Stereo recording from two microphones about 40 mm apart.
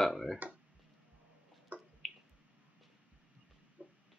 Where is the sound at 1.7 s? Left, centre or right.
Right.